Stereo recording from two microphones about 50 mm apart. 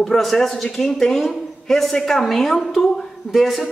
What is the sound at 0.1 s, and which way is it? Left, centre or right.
A man's voice, centre.